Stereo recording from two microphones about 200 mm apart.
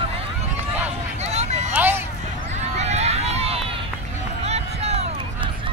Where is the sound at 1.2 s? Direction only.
35° right (ahead or behind).